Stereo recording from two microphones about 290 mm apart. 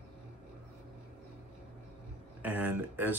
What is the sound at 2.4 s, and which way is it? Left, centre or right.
Speech, centre.